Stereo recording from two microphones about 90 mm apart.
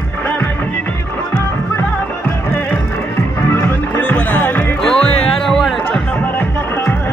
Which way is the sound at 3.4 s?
25° left (ahead or behind).